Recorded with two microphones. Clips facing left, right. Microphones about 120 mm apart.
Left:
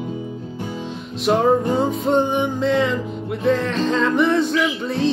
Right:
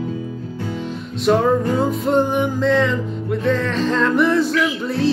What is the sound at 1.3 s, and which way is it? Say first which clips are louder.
Music: right 2 dB; 15° left (ahead or behind).